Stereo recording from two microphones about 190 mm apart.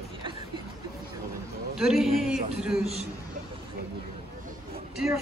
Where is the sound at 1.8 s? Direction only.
Centre (ahead or behind).